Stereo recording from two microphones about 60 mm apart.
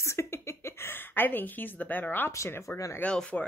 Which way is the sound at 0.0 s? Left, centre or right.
Left.